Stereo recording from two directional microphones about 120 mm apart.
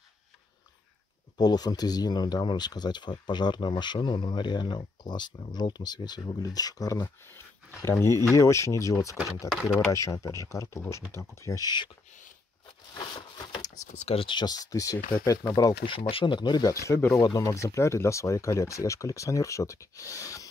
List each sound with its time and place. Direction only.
1.4 s speech: 35° left (ahead or behind)
7.0 s speech: 20° left (ahead or behind)
9.1 s speech: 5° right (ahead or behind)
9.9 s speech: 25° left (ahead or behind)
13.0 s a sound: 40° left (ahead or behind)
13.9 s speech: 55° left (ahead or behind); by 15.7 s 30° left (ahead or behind)
15.8 s speech: 50° left (ahead or behind); by 20.4 s 25° left (ahead or behind)